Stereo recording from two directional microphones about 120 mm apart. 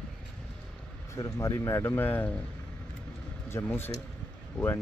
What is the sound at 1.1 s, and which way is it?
Speech, 30° left (ahead or behind).